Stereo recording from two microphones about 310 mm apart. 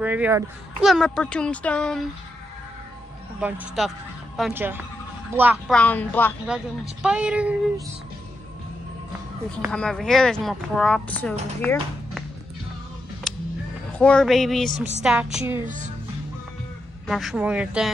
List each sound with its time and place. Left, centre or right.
0.0 s speech: centre
3.3 s speech: centre
9.7 s speech: centre
13.9 s speech: centre
15.6 s speech: right
17.1 s speech: centre